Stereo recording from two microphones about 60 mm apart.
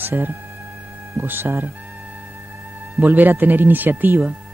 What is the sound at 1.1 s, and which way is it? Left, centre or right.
Music, right.